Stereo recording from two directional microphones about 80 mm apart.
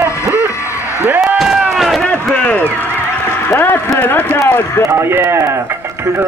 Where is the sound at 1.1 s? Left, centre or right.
Centre.